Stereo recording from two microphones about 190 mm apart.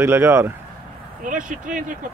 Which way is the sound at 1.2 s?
45° right (ahead or behind).